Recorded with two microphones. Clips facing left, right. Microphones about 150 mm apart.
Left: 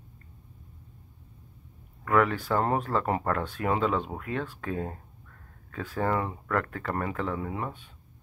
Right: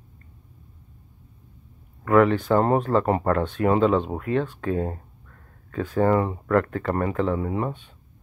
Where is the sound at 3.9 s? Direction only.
25° right (ahead or behind).